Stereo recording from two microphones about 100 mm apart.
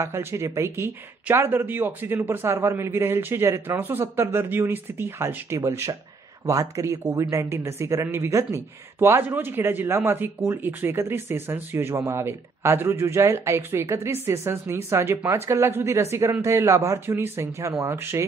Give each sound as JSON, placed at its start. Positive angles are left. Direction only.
{"t": 0.0, "sound": "speech", "side_deg": -25}